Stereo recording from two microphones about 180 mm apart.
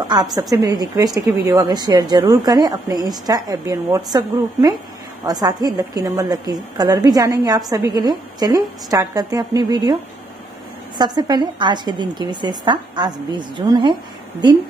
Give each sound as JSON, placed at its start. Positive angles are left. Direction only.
{"t": 0.4, "sound": "a woman's voice", "side_deg": -20}
{"t": 11.0, "sound": "a woman's voice", "side_deg": -20}